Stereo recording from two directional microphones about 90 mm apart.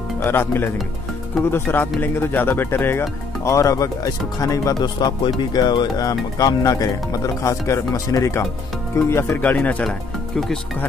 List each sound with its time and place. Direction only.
0.2 s speech: 25° left (ahead or behind); by 4.8 s 40° left (ahead or behind)
4.8 s speech: 60° left (ahead or behind); by 9.1 s 30° left (ahead or behind)
9.4 s speech: 20° left (ahead or behind)
9.8 s speech: 5° left (ahead or behind)